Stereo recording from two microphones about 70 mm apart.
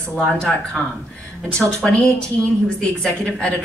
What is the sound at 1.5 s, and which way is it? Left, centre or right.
Speech, centre.